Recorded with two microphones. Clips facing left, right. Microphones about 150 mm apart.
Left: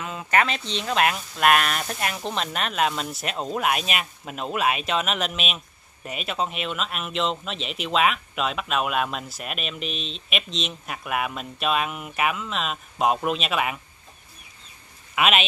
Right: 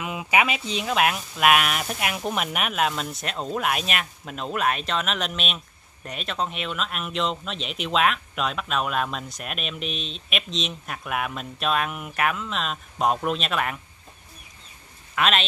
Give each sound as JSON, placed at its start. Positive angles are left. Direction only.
{"t": 0.0, "sound": "speech", "side_deg": -15}
{"t": 15.1, "sound": "speech", "side_deg": 10}